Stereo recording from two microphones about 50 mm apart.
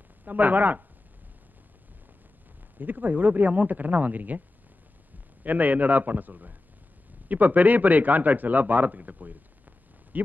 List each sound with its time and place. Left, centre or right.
0.2 s speech: right
2.8 s speech: right
5.4 s speech: right